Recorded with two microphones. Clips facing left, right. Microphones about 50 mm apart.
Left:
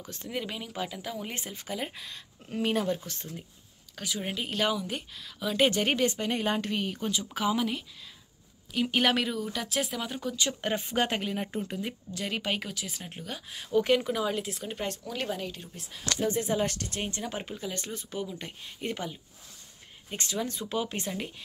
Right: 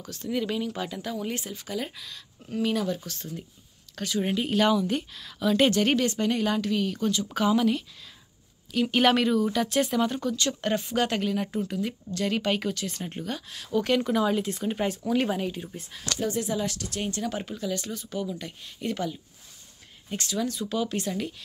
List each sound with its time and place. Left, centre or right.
0.0 s speech: left
0.3 s speech: centre
3.9 s speech: centre
5.7 s speech: centre
7.3 s speech: centre
16.3 s speech: left
17.0 s speech: left